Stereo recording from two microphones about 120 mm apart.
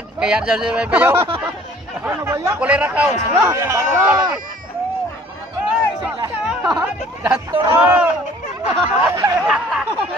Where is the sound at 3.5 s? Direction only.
25° right (ahead or behind).